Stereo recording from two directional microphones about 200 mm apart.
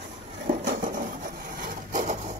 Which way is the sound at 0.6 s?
45° right (ahead or behind).